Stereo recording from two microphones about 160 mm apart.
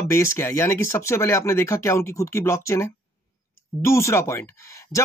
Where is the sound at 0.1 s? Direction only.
15° left (ahead or behind).